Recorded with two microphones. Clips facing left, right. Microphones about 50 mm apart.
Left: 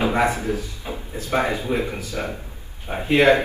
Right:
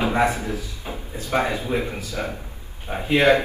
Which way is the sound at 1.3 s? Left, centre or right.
Left.